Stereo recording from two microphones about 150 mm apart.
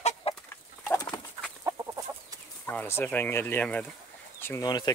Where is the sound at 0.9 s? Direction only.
25° left (ahead or behind).